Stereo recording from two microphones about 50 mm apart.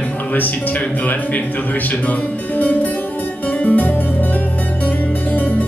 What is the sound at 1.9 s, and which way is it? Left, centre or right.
Music, left.